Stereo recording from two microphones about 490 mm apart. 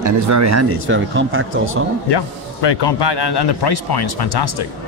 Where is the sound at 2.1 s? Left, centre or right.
Left.